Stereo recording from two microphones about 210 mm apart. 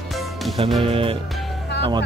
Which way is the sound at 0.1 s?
Centre (ahead or behind).